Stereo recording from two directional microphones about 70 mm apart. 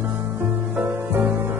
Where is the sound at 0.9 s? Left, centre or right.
Right.